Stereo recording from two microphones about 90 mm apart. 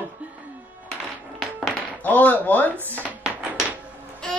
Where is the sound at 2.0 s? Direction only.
20° left (ahead or behind).